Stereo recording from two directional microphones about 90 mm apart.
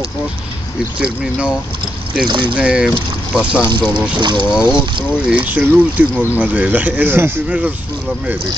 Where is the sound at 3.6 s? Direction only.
55° right (ahead or behind).